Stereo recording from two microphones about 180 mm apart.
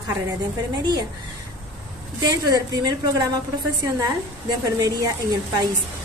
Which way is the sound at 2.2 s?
20° right (ahead or behind).